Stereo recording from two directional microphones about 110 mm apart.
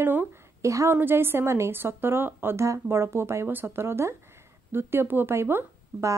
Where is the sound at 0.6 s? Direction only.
25° right (ahead or behind).